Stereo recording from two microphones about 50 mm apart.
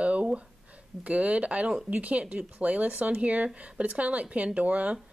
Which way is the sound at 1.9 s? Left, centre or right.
Right.